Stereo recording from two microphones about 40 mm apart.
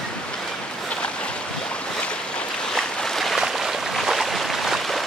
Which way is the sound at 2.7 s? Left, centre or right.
Centre.